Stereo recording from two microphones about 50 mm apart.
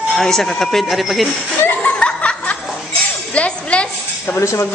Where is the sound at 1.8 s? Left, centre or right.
Left.